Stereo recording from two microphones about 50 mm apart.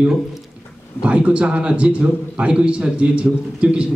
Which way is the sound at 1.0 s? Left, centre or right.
Right.